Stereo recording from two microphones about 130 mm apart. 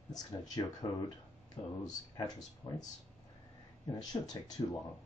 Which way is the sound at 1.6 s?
45° left (ahead or behind).